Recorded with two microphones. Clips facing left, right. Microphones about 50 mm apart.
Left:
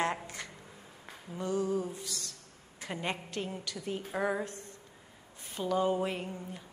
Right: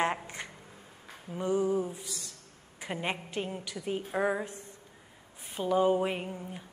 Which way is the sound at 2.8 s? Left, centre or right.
Centre.